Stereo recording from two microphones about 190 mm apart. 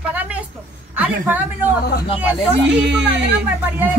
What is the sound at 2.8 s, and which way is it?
Speech, 65° right (ahead or behind).